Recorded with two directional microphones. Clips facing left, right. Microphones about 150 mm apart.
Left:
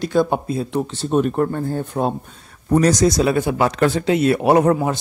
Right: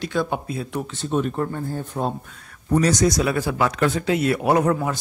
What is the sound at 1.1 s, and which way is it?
Speech, 45° left (ahead or behind).